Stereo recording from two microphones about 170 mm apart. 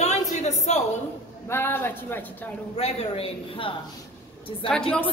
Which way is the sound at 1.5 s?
10° left (ahead or behind).